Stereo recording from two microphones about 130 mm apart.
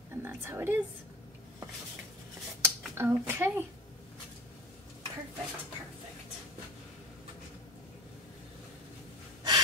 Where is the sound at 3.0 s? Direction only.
15° right (ahead or behind).